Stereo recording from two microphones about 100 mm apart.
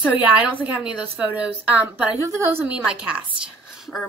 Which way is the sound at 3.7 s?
5° right (ahead or behind).